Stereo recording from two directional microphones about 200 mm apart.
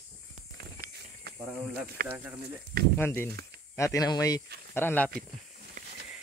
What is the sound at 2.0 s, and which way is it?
Speech, 45° right (ahead or behind).